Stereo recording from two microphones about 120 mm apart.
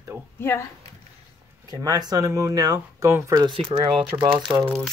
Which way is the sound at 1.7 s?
30° right (ahead or behind).